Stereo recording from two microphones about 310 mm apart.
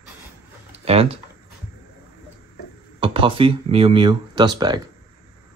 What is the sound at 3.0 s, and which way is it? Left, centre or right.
Speech, centre.